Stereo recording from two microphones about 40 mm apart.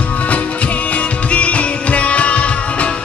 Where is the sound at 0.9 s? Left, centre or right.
Left.